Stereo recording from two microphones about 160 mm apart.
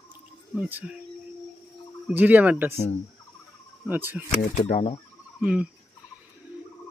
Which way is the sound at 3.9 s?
10° right (ahead or behind).